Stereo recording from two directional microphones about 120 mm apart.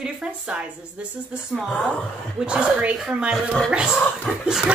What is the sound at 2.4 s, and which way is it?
Speech, 10° right (ahead or behind).